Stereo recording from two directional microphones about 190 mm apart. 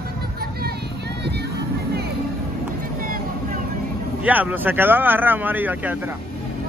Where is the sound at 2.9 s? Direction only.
50° right (ahead or behind).